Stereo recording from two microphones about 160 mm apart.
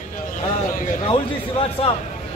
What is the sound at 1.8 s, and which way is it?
Speech, 35° left (ahead or behind).